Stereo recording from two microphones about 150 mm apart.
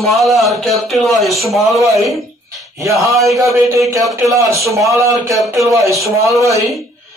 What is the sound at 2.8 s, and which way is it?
A man's voice, 20° right (ahead or behind).